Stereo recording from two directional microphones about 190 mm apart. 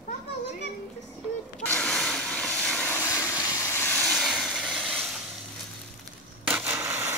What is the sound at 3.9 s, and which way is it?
Vehicle, centre (ahead or behind).